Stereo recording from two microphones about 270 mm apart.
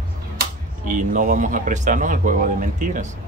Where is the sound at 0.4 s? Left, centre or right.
Right.